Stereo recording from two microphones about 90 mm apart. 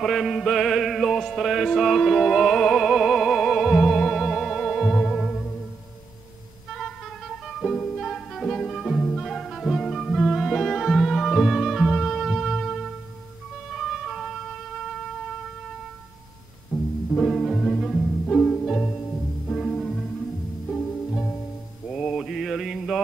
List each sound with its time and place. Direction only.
0.0 s music: centre (ahead or behind)
6.7 s music: centre (ahead or behind)
17.1 s music: 5° left (ahead or behind)
21.8 s mantra: centre (ahead or behind)